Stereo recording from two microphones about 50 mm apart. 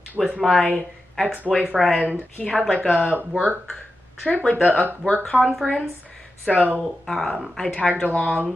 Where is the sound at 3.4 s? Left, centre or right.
Centre.